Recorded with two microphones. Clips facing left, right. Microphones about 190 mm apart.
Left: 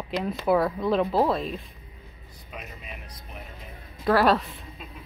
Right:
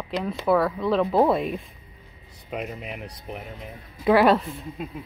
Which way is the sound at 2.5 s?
70° right (ahead or behind).